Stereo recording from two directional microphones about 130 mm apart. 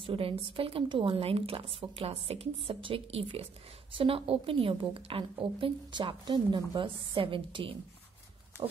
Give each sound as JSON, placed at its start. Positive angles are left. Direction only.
{"t": 0.0, "sound": "a woman's voice", "side_deg": -45}